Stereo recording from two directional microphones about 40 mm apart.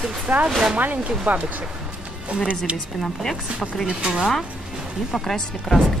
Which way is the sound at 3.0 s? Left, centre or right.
Centre.